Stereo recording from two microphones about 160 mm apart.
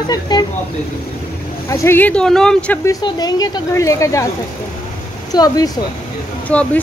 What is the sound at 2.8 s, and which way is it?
Speech, 25° left (ahead or behind).